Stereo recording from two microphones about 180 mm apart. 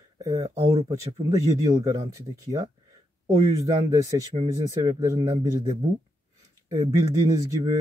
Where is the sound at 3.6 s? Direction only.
20° right (ahead or behind).